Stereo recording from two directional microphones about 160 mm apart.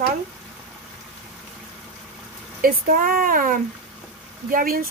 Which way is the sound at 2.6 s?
65° right (ahead or behind).